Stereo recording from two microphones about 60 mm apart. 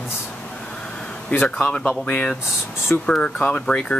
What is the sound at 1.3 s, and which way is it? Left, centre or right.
Speech, left.